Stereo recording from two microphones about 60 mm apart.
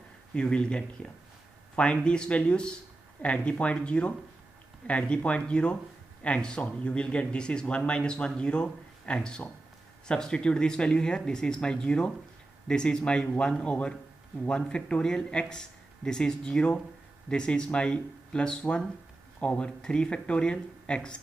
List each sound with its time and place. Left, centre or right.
0.3 s speech: centre